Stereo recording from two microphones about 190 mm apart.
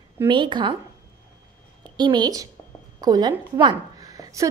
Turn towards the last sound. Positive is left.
turn(degrees=-15)  # may be behind; listen again after turning